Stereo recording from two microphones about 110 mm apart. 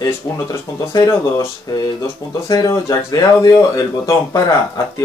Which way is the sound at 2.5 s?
35° left (ahead or behind).